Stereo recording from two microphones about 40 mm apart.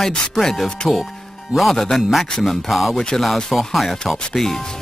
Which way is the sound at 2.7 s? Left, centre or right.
Centre.